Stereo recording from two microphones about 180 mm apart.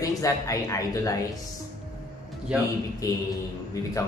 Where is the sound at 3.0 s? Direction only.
20° left (ahead or behind).